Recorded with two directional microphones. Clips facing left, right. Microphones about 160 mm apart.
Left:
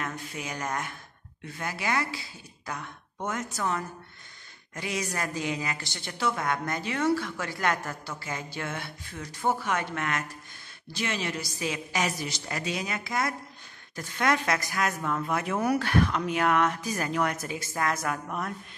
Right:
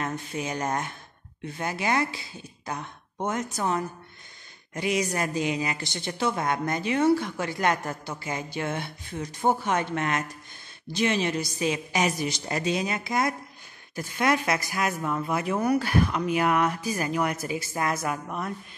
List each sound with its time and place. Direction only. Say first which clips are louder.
0.0 s a woman's voice: right 5 dB; 25° right (ahead or behind)
13.9 s speech: right 2 dB; 10° right (ahead or behind)